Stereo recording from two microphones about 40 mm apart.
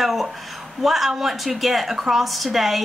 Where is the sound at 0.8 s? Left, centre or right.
Centre.